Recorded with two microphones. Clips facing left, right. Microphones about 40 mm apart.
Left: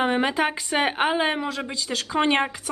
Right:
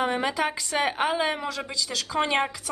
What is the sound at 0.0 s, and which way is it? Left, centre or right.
A woman's voice, left.